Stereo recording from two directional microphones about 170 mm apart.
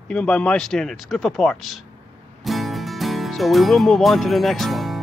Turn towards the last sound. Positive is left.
turn(degrees=0)  # may be behind; listen again after turning